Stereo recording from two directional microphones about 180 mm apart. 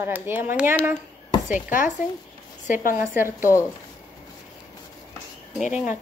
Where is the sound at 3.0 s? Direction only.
10° right (ahead or behind).